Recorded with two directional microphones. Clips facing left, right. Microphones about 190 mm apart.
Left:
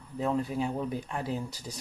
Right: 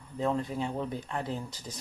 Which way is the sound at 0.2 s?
5° left (ahead or behind).